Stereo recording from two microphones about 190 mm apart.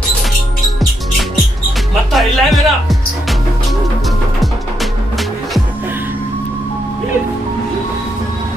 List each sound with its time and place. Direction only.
2.1 s speech: centre (ahead or behind)